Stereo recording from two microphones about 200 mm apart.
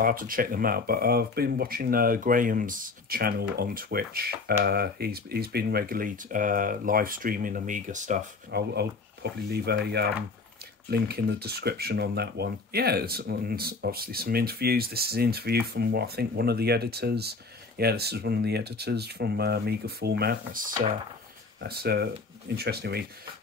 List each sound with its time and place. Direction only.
0.0 s speech: 45° right (ahead or behind)
8.5 s speech: 55° right (ahead or behind)